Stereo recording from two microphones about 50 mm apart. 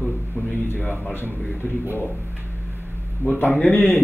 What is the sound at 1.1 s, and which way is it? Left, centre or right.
Speech, left.